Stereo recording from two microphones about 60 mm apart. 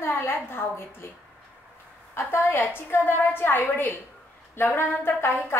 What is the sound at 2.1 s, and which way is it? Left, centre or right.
A woman's voice, left.